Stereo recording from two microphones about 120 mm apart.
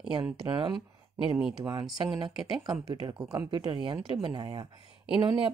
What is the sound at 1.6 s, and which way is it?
Speech, 35° right (ahead or behind).